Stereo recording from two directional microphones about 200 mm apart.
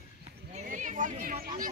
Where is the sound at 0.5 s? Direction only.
40° right (ahead or behind).